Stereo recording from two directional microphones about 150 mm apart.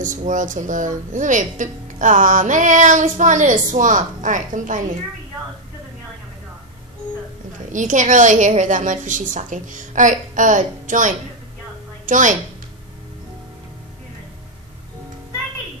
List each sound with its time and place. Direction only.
0.0 s a woman's voice: 60° right (ahead or behind)
7.7 s a woman's voice: 60° right (ahead or behind)